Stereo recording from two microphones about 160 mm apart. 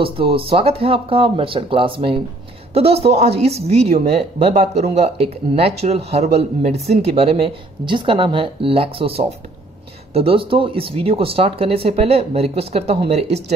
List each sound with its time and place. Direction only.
0.0 s speech: 35° right (ahead or behind)